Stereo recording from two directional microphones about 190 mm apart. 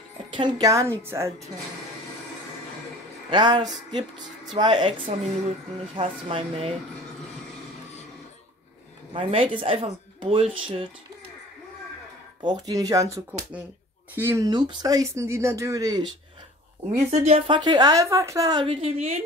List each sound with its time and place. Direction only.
0.3 s a woman's voice: 20° right (ahead or behind)
3.3 s a woman's voice: 25° right (ahead or behind)
9.1 s a woman's voice: 30° right (ahead or behind)
12.4 s speech: 20° right (ahead or behind)
17.1 s a woman's voice: 30° right (ahead or behind)